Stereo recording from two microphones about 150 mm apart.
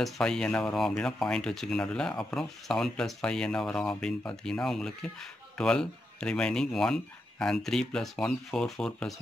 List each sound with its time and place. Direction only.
0.0 s speech: 5° left (ahead or behind)